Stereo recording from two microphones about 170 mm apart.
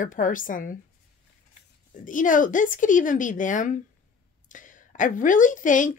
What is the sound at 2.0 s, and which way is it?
A woman's voice, 50° left (ahead or behind).